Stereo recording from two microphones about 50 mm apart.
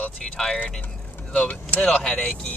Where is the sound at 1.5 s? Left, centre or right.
Left.